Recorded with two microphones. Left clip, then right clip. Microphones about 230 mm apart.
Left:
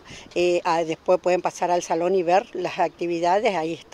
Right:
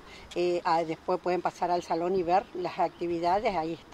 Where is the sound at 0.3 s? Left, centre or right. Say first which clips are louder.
Left 6 dB; left.